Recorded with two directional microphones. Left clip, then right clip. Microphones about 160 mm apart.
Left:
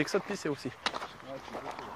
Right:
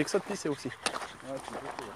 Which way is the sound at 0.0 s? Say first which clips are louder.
Right 1 dB; 10° right (ahead or behind).